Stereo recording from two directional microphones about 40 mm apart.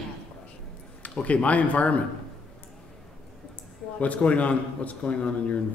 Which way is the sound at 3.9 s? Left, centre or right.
Left.